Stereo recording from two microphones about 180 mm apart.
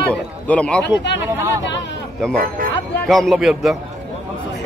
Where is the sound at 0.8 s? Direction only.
75° left (ahead or behind).